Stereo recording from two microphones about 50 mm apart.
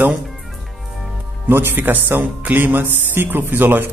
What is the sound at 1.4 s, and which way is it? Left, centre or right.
Speech, right.